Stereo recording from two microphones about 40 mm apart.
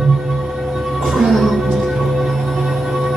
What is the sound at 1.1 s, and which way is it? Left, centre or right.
Music, centre.